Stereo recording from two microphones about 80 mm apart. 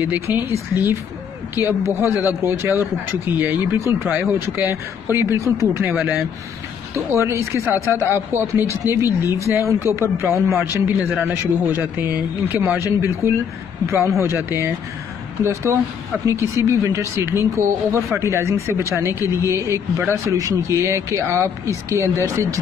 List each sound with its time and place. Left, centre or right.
0.0 s speech: right
6.9 s speech: right
12.5 s speech: right